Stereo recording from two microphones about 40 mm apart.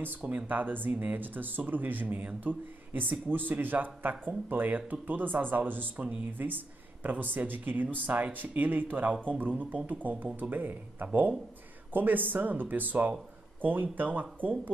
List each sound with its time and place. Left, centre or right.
0.2 s speech: right
0.5 s speech: right